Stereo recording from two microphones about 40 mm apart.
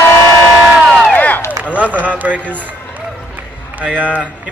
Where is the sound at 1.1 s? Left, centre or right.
Left.